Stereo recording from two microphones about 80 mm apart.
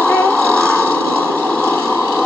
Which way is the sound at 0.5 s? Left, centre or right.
Centre.